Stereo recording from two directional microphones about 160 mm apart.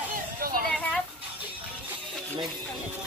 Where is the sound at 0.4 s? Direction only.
65° right (ahead or behind).